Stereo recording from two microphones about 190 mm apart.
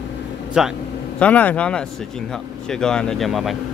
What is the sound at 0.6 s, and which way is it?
Speech, 5° right (ahead or behind).